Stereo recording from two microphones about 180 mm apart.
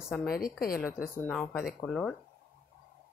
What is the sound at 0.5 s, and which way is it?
Speech, 55° left (ahead or behind).